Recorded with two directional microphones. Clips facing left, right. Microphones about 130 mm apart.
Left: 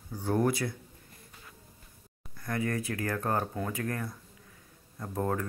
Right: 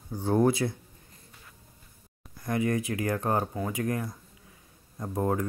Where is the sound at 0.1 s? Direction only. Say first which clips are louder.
Right 4 dB; 25° right (ahead or behind).